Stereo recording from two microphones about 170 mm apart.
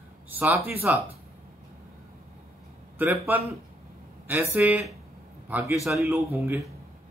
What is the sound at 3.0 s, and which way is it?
A man's voice, 10° right (ahead or behind).